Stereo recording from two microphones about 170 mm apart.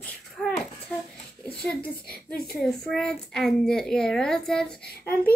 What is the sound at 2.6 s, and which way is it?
A child's voice, 5° left (ahead or behind).